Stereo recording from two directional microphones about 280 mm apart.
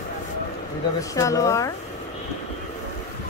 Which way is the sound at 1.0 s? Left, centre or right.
Centre.